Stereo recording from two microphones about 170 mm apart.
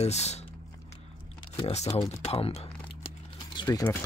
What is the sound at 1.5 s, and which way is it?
Speech, 35° left (ahead or behind).